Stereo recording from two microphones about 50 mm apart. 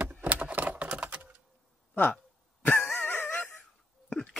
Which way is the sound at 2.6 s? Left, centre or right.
Left.